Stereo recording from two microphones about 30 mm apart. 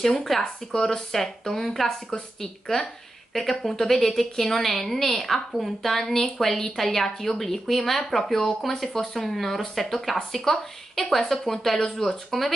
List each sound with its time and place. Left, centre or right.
0.0 s a woman's voice: centre
1.9 s a woman's voice: left
2.4 s a woman's voice: centre